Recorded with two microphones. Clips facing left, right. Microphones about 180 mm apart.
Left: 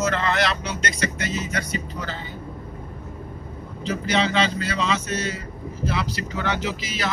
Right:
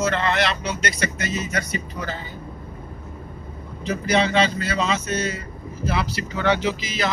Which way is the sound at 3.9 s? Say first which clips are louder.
Right 2 dB; 40° right (ahead or behind).